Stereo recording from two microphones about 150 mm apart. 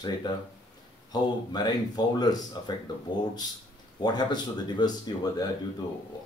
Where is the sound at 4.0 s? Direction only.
30° left (ahead or behind).